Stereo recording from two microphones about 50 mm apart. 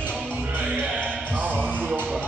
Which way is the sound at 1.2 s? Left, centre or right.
Right.